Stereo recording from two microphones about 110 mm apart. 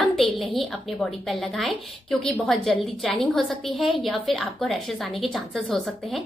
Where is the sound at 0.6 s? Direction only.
Centre (ahead or behind).